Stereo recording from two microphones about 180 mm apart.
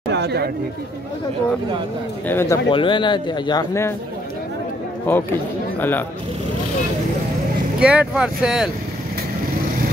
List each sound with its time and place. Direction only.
0.1 s chatter: 65° right (ahead or behind)
2.2 s a man's voice: 15° left (ahead or behind)
2.7 s speech: 25° left (ahead or behind)
5.1 s a man's voice: 10° left (ahead or behind)
7.8 s speech: 5° right (ahead or behind)